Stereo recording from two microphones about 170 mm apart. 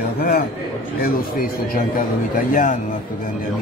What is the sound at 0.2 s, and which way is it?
Speech, 65° left (ahead or behind).